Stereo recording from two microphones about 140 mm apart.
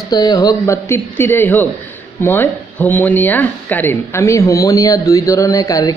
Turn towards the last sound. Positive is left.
turn(degrees=25)  # may be behind; listen again after turning